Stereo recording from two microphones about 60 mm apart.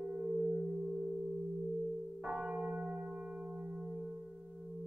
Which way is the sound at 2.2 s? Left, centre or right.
Centre.